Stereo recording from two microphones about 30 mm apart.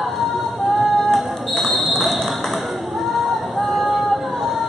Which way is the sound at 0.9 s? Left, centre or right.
Centre.